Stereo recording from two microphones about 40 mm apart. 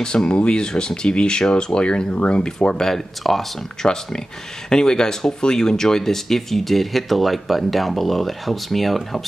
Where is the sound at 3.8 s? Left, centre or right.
Left.